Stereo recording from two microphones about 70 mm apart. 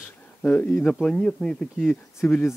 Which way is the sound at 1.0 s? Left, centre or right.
Centre.